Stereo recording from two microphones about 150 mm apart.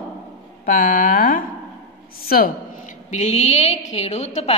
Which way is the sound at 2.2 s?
90° left.